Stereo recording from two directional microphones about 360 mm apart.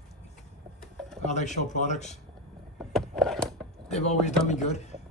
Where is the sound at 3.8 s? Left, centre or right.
Centre.